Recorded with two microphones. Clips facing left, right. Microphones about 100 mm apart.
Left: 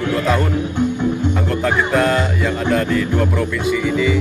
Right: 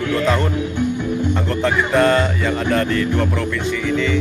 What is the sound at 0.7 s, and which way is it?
Music, 20° left (ahead or behind).